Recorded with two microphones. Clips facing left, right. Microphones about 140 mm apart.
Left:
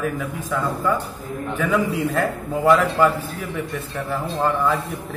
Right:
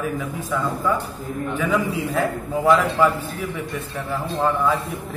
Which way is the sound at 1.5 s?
Centre (ahead or behind).